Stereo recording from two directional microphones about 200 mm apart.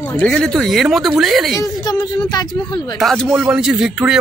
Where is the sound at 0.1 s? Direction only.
5° left (ahead or behind).